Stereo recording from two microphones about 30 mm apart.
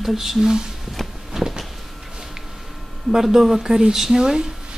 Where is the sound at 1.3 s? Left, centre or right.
Centre.